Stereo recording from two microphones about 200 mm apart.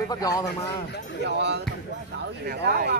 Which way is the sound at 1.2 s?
60° right (ahead or behind).